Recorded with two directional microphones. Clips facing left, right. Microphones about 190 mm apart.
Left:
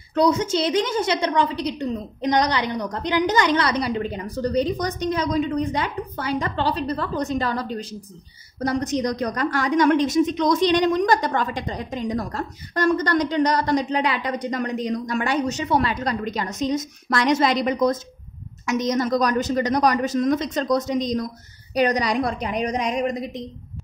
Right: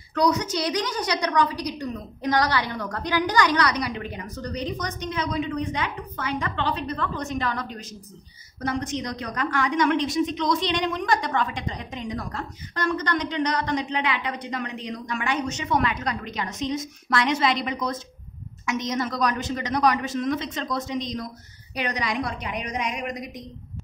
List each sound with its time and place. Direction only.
0.1 s a woman's voice: 25° left (ahead or behind)